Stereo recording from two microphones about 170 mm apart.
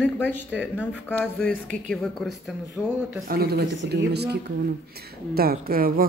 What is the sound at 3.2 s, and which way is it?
Speech, 65° right (ahead or behind).